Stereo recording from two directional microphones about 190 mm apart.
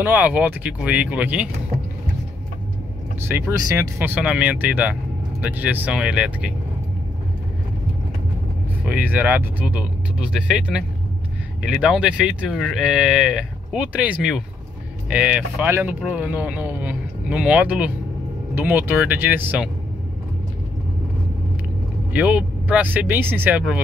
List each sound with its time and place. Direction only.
0.0 s speech: 10° right (ahead or behind)
3.2 s speech: 10° right (ahead or behind)
8.8 s speech: 10° right (ahead or behind)
22.1 s speech: 5° right (ahead or behind)